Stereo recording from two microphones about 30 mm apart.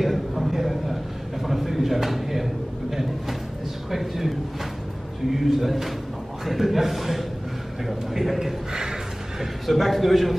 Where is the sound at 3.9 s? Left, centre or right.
Centre.